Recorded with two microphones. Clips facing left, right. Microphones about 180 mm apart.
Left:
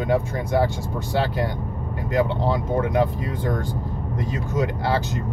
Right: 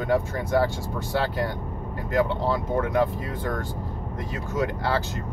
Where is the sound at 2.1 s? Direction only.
15° left (ahead or behind).